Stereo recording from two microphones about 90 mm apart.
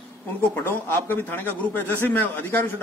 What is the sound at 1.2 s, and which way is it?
Speech, 20° left (ahead or behind).